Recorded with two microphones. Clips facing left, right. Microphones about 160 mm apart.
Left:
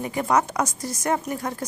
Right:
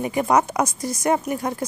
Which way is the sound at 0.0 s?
15° right (ahead or behind).